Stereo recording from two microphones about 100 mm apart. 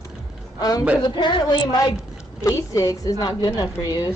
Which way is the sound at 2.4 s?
30° left (ahead or behind).